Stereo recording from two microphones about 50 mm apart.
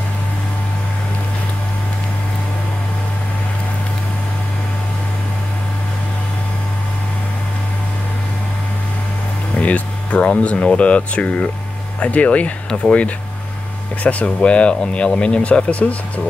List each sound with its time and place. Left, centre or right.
9.6 s music: left
10.8 s speech: left
14.0 s speech: left